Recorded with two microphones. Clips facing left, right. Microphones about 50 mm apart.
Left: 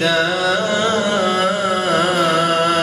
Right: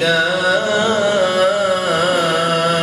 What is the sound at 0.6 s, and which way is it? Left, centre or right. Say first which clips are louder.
Carnatic music: right 2 dB; centre.